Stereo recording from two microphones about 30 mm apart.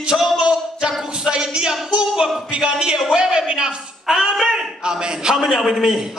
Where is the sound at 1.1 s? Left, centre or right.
Right.